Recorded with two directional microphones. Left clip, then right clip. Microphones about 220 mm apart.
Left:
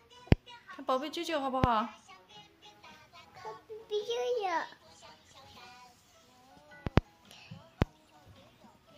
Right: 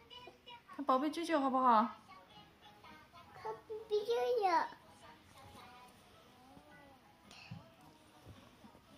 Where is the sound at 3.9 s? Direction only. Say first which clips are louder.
Left 2 dB; 35° left (ahead or behind).